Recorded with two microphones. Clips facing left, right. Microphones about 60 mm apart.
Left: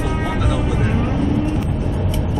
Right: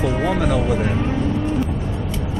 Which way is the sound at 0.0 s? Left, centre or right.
Centre.